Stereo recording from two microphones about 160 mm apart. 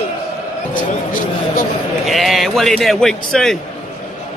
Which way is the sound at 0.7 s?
55° left (ahead or behind).